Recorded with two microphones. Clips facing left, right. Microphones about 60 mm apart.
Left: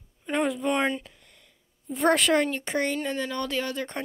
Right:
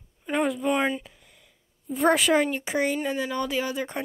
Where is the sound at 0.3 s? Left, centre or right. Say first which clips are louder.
Right 1 dB; centre.